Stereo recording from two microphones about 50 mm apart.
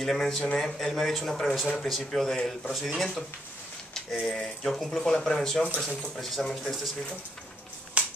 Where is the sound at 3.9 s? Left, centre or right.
Centre.